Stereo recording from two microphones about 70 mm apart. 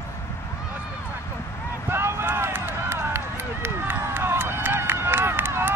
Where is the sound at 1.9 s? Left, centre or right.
Right.